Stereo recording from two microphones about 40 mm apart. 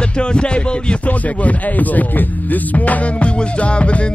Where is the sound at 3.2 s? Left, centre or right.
Left.